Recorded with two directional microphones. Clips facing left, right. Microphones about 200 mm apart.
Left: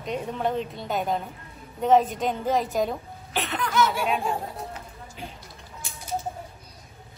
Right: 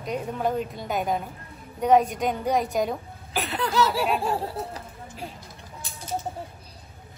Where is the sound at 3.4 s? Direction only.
35° right (ahead or behind).